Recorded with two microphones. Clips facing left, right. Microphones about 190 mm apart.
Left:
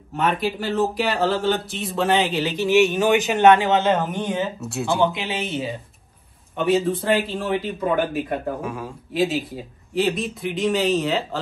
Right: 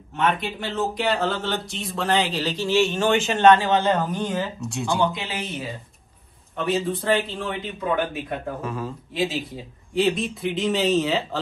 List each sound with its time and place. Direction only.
0.1 s speech: centre (ahead or behind)
2.4 s speech: 20° left (ahead or behind)
4.6 s speech: centre (ahead or behind)
5.0 s speech: 25° left (ahead or behind)
6.5 s speech: centre (ahead or behind)